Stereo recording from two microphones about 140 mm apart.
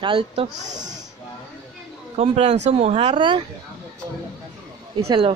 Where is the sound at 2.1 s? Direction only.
50° right (ahead or behind).